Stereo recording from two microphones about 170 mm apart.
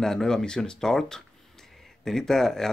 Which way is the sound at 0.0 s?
5° left (ahead or behind).